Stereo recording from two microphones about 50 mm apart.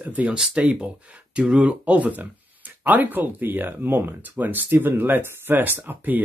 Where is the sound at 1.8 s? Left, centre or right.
Right.